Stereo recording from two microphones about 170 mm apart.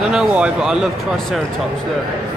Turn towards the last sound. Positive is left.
turn(degrees=-5)  # may be behind; listen again after turning